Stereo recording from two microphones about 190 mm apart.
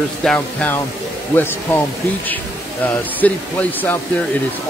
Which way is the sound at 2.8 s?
10° left (ahead or behind).